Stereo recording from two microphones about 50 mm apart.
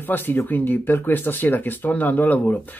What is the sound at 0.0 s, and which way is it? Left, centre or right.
Speech, left.